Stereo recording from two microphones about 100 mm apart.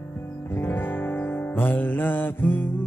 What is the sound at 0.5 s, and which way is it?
Music, 20° left (ahead or behind).